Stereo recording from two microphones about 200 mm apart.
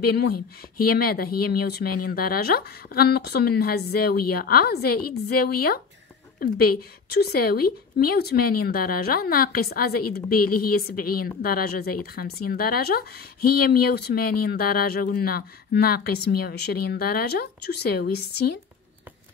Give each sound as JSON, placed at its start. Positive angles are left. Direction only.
{"t": 0.0, "sound": "speech", "side_deg": 50}
{"t": 7.2, "sound": "speech", "side_deg": 50}